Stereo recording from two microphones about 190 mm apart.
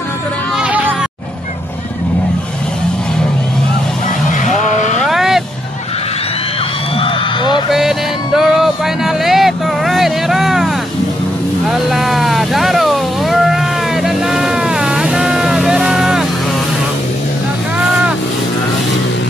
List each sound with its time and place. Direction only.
0.7 s music: 10° right (ahead or behind)
4.3 s vehicle: 40° left (ahead or behind)
4.9 s vehicle: centre (ahead or behind)
7.0 s a sound: 25° left (ahead or behind)
7.7 s music: centre (ahead or behind)
11.6 s a sound: centre (ahead or behind)
14.0 s vehicle: centre (ahead or behind)